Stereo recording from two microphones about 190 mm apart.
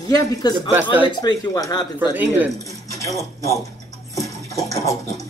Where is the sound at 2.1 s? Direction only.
10° right (ahead or behind).